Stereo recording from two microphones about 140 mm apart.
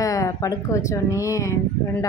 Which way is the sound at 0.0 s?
25° left (ahead or behind).